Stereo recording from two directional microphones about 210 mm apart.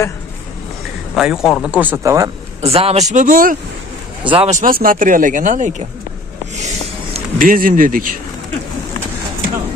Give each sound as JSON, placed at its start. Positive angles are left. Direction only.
{"t": 1.1, "sound": "speech", "side_deg": 0}
{"t": 2.6, "sound": "speech", "side_deg": -30}
{"t": 4.2, "sound": "speech", "side_deg": -25}
{"t": 7.2, "sound": "speech", "side_deg": -40}